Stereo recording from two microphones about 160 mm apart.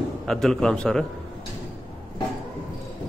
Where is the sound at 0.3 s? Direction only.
5° left (ahead or behind).